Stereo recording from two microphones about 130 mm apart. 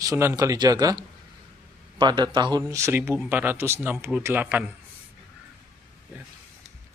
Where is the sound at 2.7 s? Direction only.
20° right (ahead or behind).